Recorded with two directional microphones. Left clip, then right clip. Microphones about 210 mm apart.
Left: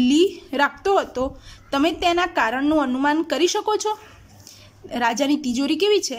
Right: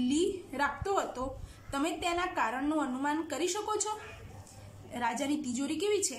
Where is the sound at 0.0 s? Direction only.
40° left (ahead or behind).